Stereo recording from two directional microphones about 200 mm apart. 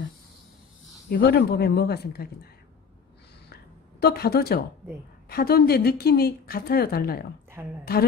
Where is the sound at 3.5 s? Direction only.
50° left (ahead or behind).